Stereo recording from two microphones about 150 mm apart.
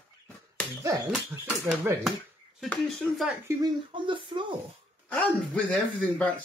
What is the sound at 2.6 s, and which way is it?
Speech, centre (ahead or behind).